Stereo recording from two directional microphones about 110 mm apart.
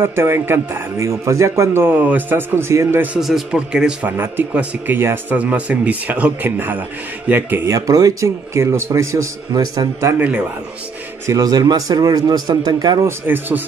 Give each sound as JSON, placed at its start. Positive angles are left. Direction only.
{"t": 0.0, "sound": "speech", "side_deg": -20}
{"t": 3.2, "sound": "speech", "side_deg": -5}
{"t": 7.7, "sound": "speech", "side_deg": -30}
{"t": 10.1, "sound": "speech", "side_deg": -15}
{"t": 11.2, "sound": "a man's voice", "side_deg": -35}
{"t": 13.0, "sound": "speech", "side_deg": -20}